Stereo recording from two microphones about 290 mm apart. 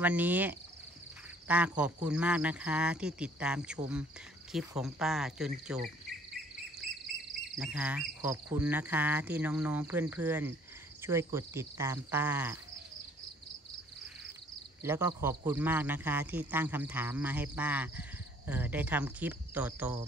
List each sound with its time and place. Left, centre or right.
0.0 s speech: centre
6.0 s cricket: centre
11.3 s a man's voice: centre
14.8 s a man's voice: centre